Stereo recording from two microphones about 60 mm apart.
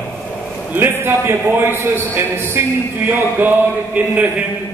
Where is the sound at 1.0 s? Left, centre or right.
Right.